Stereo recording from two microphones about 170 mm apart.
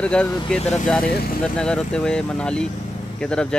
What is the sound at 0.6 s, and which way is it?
Speech, 40° left (ahead or behind).